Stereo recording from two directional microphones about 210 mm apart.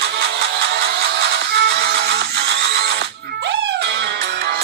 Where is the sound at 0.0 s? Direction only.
55° right (ahead or behind).